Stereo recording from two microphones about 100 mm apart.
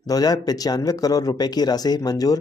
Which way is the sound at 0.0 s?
40° left (ahead or behind).